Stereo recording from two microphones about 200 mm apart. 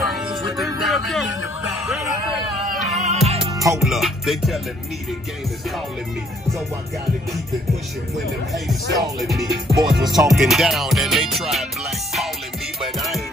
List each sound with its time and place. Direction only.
0.1 s music: centre (ahead or behind)
2.7 s music: 35° right (ahead or behind)
3.5 s music: 15° right (ahead or behind)
3.8 s music: centre (ahead or behind)
9.2 s music: centre (ahead or behind)
12.8 s music: centre (ahead or behind)